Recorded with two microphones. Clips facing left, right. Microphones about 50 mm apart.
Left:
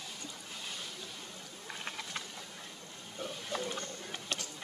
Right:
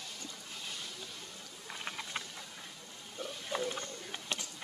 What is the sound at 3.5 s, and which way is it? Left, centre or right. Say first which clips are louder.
Wild animals: right 2 dB; centre.